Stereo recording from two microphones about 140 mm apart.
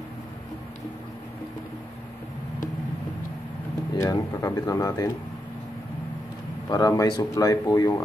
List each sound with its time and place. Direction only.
3.9 s speech: 25° left (ahead or behind)
6.7 s speech: 25° left (ahead or behind)